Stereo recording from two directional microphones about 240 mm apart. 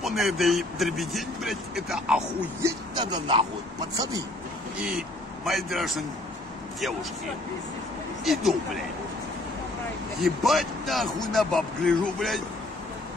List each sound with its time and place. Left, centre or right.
0.0 s speech: centre
2.9 s speech: right
4.7 s a man's voice: centre
8.2 s speech: centre
10.2 s speech: centre